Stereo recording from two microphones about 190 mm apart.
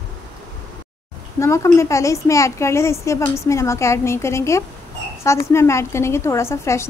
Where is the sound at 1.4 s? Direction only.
15° left (ahead or behind).